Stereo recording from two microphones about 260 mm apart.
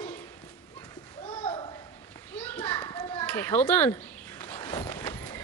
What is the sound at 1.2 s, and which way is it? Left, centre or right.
Children playing, centre.